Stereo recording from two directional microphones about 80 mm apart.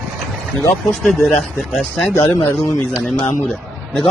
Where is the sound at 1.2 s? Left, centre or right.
Centre.